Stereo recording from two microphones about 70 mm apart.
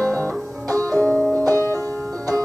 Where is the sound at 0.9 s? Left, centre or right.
Left.